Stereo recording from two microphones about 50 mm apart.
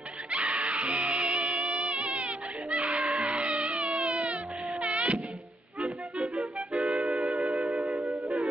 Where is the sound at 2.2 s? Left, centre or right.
Right.